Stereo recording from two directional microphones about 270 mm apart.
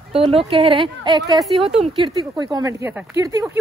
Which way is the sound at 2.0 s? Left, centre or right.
Centre.